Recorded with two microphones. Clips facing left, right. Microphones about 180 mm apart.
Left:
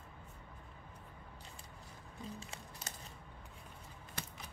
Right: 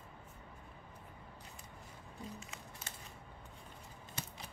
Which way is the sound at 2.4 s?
35° left (ahead or behind).